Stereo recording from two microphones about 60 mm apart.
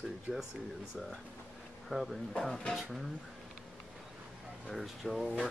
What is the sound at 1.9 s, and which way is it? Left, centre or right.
Speech, centre.